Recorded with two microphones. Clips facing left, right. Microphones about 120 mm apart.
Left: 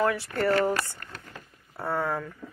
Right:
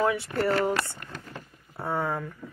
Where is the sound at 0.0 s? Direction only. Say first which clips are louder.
Even; 20° right (ahead or behind).